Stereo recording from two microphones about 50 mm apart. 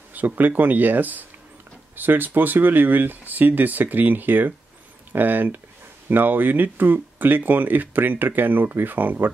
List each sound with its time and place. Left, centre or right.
0.1 s speech: right